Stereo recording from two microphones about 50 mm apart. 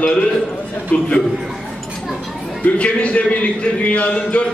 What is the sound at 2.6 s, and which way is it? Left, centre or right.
A man's voice, left.